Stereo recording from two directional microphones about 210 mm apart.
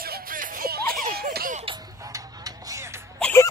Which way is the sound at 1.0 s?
45° right (ahead or behind).